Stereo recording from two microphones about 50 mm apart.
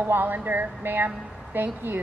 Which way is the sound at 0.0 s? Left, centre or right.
Right.